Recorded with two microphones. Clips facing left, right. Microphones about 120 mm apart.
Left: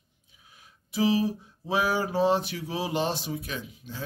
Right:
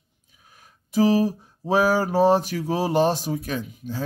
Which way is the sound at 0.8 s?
45° right (ahead or behind).